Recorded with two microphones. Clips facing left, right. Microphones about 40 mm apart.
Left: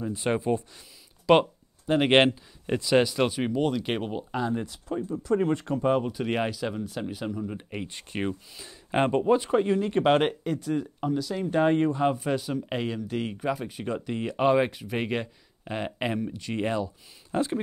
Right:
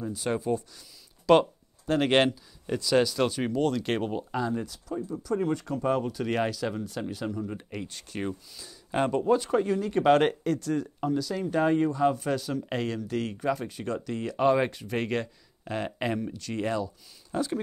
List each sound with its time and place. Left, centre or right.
0.0 s speech: left
1.2 s speech: left
4.6 s speech: left; by 7.5 s centre
7.5 s speech: left
10.1 s speech: centre
11.7 s speech: left
12.2 s speech: centre